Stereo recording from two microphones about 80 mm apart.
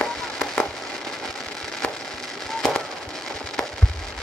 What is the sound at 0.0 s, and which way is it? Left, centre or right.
Fireworks, centre.